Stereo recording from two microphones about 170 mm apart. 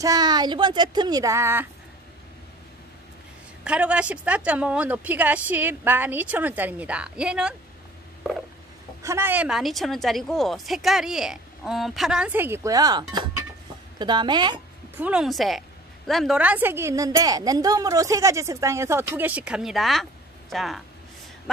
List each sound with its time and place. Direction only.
0.0 s speech: 20° right (ahead or behind)
3.6 s a woman's voice: 5° right (ahead or behind)
9.0 s a woman's voice: 15° right (ahead or behind)
15.0 s a woman's voice: 5° right (ahead or behind)